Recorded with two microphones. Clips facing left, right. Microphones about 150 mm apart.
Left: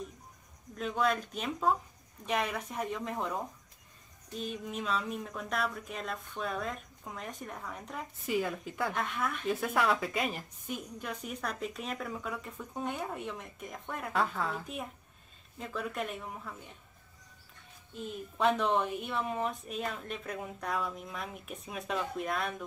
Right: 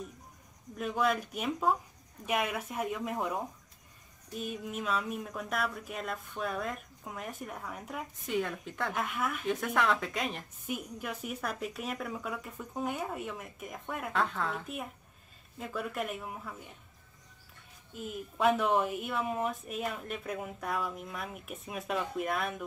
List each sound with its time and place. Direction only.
0.7 s speech: 5° right (ahead or behind)
17.9 s speech: 5° right (ahead or behind)